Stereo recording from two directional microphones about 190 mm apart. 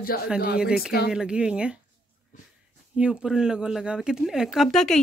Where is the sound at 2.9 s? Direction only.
5° right (ahead or behind).